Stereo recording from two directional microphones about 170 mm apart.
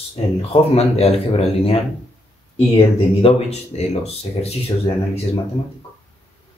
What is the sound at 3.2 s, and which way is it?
Speech, 35° left (ahead or behind).